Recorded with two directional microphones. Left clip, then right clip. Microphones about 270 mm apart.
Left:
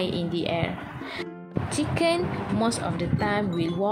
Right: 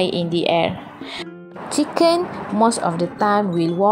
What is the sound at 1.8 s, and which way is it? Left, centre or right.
Speech, right.